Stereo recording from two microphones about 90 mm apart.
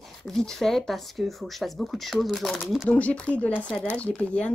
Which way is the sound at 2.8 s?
15° left (ahead or behind).